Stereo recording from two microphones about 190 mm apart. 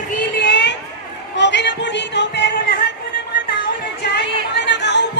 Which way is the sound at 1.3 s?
65° left (ahead or behind).